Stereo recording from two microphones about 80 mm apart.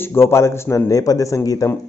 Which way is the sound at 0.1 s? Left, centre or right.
Left.